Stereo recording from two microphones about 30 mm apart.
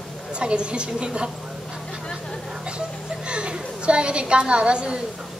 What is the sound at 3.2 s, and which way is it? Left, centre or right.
A woman's voice, right.